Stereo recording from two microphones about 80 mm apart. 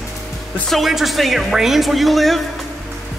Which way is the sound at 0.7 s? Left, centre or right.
Centre.